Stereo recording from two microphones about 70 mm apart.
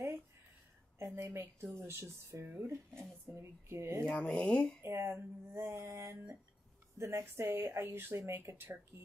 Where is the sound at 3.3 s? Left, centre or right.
Right.